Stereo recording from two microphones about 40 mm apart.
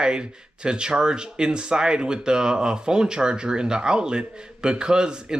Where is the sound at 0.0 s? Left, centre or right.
Right.